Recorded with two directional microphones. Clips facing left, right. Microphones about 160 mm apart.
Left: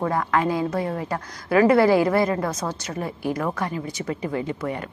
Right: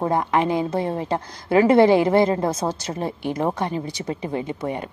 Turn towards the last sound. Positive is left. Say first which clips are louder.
# right 1 dB
turn(degrees=-20)  # may be behind; listen again after turning